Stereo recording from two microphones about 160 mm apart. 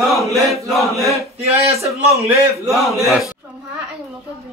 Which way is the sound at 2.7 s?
Centre (ahead or behind).